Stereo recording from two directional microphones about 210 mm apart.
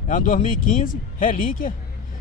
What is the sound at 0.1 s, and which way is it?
Speech, 40° left (ahead or behind).